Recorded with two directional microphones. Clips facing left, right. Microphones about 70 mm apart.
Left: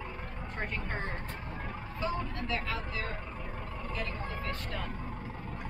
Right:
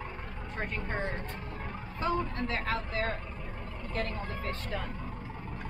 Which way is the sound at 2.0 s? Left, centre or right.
Right.